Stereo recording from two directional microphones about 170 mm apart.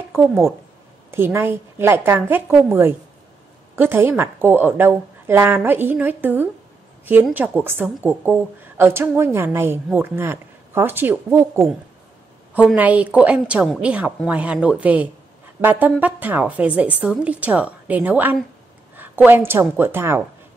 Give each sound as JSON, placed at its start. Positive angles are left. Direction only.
{"t": 0.1, "sound": "a woman's voice", "side_deg": -15}